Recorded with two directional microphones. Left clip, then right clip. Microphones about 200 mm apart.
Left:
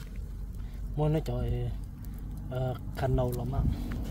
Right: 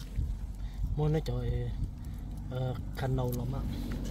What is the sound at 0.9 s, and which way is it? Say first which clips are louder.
Speech: left 2 dB; 50° left (ahead or behind).